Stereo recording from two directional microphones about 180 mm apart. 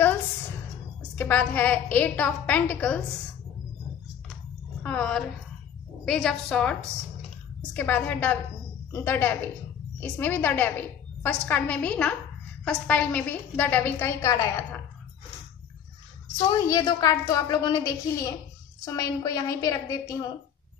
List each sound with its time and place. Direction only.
1.1 s a woman's voice: 10° left (ahead or behind)
4.8 s a woman's voice: 5° left (ahead or behind)
16.4 s a woman's voice: 20° left (ahead or behind)